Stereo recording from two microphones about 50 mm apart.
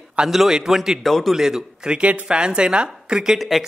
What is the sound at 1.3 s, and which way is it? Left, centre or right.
Speech, centre.